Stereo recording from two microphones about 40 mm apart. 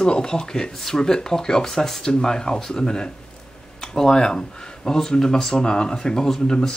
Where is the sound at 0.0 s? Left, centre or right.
Centre.